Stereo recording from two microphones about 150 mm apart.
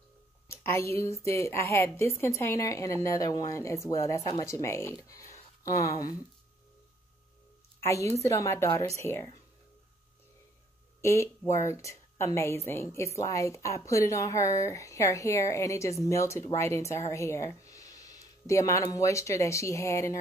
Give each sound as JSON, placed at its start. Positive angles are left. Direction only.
{"t": 0.5, "sound": "a woman's voice", "side_deg": 15}
{"t": 7.8, "sound": "a woman's voice", "side_deg": 20}
{"t": 11.0, "sound": "a woman's voice", "side_deg": 20}